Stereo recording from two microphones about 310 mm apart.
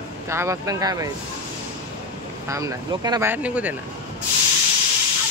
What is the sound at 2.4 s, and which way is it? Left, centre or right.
Speech, centre.